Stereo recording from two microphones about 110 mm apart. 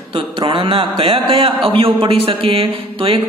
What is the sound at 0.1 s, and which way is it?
A man's voice, 50° right (ahead or behind).